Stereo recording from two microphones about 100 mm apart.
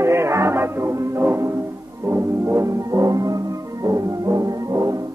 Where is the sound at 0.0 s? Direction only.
30° right (ahead or behind).